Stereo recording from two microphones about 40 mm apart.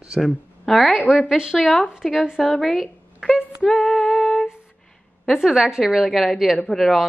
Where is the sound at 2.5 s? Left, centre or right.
Left.